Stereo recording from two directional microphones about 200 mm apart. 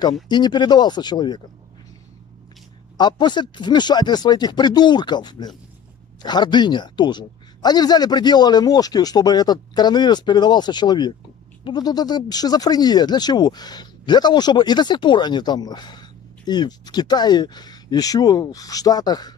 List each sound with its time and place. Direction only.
0.3 s speech: 20° left (ahead or behind)
3.0 s speech: 20° left (ahead or behind)